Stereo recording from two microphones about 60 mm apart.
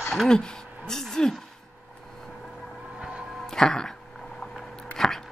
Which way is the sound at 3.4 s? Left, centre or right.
Centre.